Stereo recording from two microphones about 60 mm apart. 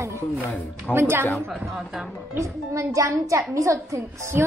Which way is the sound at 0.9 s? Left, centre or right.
Right.